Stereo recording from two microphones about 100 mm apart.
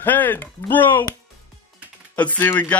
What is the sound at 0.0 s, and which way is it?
Speech, 20° left (ahead or behind).